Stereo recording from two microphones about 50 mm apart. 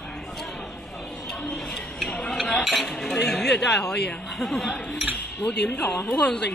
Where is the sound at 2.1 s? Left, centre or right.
Centre.